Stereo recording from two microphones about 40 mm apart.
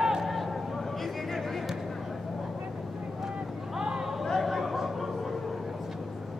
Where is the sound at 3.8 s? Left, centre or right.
Centre.